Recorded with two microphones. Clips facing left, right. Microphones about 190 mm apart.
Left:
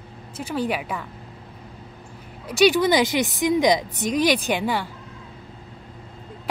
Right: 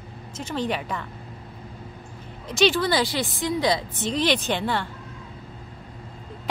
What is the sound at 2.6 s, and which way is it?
Speech, 15° left (ahead or behind).